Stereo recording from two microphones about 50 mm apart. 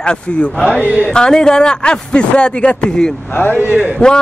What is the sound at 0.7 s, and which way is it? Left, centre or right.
Speech, right.